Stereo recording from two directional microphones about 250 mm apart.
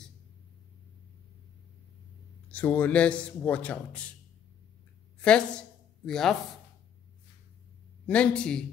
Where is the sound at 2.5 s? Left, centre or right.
Centre.